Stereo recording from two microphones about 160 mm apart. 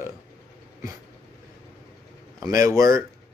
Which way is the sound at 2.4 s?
20° right (ahead or behind).